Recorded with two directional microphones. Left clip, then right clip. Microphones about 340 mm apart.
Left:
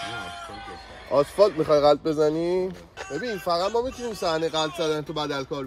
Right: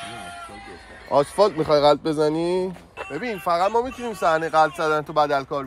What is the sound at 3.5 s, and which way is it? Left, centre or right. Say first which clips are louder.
Speech: right 4 dB; right.